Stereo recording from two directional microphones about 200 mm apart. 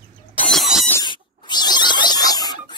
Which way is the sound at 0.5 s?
Centre (ahead or behind).